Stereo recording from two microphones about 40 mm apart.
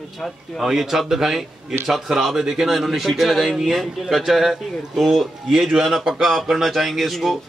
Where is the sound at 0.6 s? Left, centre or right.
Centre.